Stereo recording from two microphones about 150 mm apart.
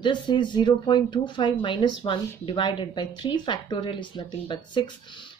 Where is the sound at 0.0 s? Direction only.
30° left (ahead or behind).